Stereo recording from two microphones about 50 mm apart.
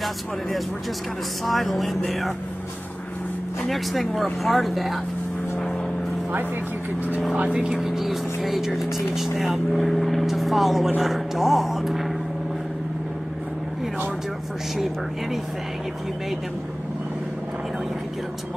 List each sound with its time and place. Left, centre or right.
1.4 s speech: centre
3.6 s speech: centre
7.3 s speech: right
7.8 s speech: centre